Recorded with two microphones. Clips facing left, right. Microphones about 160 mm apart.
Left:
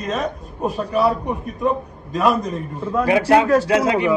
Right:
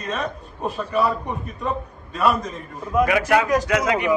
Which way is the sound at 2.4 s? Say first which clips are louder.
Left 6 dB; 40° left (ahead or behind).